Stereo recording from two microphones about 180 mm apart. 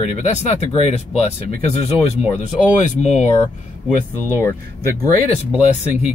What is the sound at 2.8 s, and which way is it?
Speech, 40° left (ahead or behind).